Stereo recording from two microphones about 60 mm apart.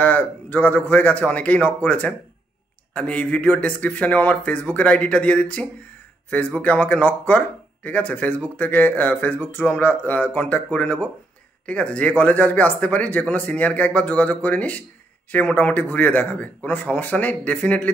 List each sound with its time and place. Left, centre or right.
0.0 s speech: left